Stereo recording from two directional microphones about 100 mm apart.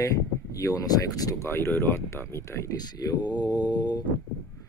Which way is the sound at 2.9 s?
45° left (ahead or behind).